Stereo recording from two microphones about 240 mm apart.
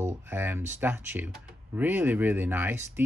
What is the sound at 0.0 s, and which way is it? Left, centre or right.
Speech, centre.